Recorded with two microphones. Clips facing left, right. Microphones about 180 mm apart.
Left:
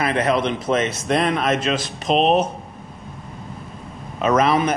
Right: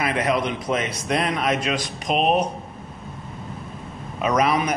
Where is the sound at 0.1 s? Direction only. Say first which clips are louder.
Left 3 dB; 30° left (ahead or behind).